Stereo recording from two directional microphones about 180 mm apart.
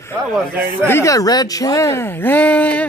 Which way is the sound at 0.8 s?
15° left (ahead or behind).